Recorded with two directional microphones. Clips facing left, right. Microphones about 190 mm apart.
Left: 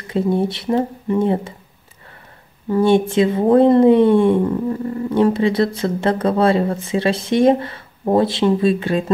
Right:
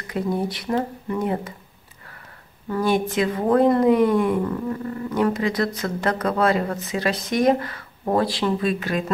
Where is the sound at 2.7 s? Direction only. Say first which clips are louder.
Left 7 dB; 25° left (ahead or behind).